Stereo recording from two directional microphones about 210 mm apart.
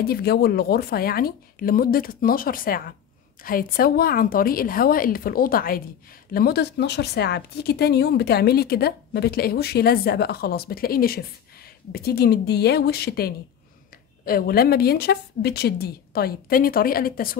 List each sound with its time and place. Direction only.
0.0 s speech: 45° left (ahead or behind)